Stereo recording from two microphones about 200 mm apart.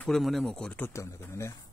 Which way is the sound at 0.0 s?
Centre (ahead or behind).